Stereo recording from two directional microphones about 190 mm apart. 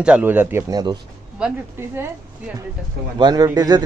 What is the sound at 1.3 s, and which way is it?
Speech, 10° right (ahead or behind).